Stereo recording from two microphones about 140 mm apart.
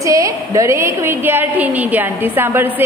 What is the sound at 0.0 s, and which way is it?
A woman's voice, 25° right (ahead or behind).